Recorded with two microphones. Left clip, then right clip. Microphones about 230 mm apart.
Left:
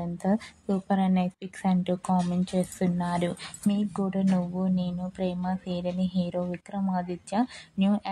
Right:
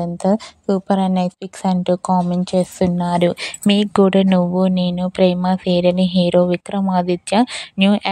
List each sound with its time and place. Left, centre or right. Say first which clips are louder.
0.0 s a woman's voice: right 11 dB; right